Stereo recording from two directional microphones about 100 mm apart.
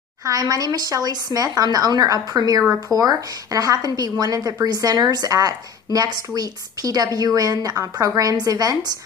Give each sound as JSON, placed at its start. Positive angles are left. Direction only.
{"t": 0.2, "sound": "a woman's voice", "side_deg": -35}